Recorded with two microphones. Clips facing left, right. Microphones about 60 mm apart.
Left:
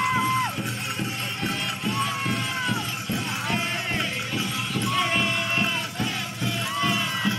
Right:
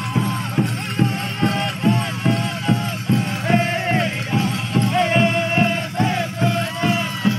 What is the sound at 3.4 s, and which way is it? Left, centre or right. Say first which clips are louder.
Music: right 11 dB; right.